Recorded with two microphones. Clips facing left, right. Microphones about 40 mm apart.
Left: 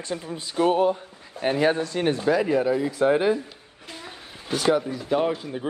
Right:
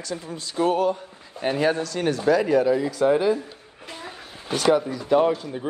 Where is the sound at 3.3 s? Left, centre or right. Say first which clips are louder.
Even; right.